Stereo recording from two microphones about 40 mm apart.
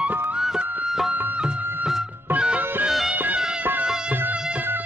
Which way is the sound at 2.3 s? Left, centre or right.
Right.